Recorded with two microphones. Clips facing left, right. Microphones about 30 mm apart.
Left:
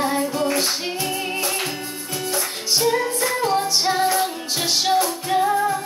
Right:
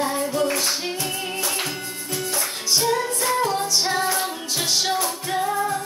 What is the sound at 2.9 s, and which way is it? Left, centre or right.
Music, left.